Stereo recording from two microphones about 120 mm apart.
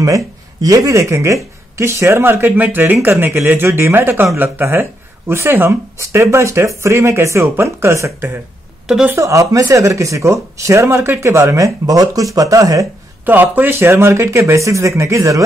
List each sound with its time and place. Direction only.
0.0 s speech: 30° right (ahead or behind)
8.8 s speech: 5° right (ahead or behind)
9.1 s speech: 25° right (ahead or behind)
13.2 s speech: 15° right (ahead or behind)